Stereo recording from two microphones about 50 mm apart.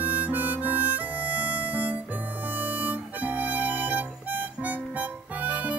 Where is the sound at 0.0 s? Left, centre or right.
Right.